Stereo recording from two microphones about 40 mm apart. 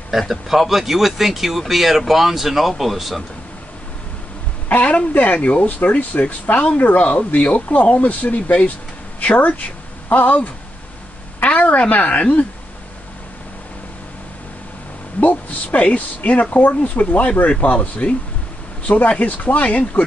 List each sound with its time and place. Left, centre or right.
0.3 s speech: centre
4.6 s speech: left
11.4 s a sound: left
11.9 s speech: left
15.1 s speech: left